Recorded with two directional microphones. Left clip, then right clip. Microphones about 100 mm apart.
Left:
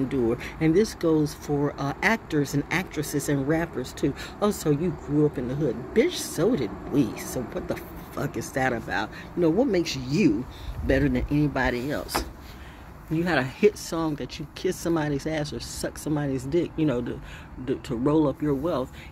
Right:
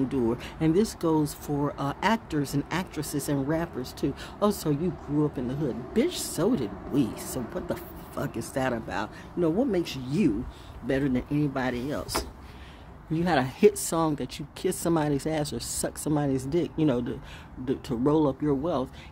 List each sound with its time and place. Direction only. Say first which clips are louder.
0.1 s speech: left 2 dB; 35° right (ahead or behind); by 12.0 s 15° right (ahead or behind)
13.1 s speech: left 1 dB; 50° right (ahead or behind)